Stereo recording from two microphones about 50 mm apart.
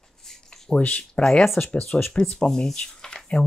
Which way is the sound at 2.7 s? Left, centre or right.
Centre.